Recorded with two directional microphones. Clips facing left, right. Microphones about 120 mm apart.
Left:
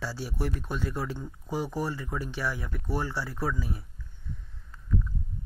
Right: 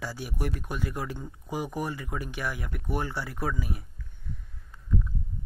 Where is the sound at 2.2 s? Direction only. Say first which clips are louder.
Left 1 dB; 55° right (ahead or behind).